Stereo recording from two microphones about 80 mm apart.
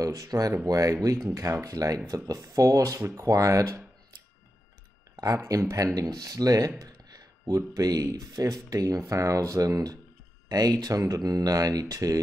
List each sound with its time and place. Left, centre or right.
0.0 s speech: right
5.1 s speech: right